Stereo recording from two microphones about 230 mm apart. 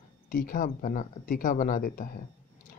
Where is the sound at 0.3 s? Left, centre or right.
Left.